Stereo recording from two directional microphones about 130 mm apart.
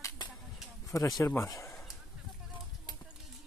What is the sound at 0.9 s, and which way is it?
Speech, 25° left (ahead or behind).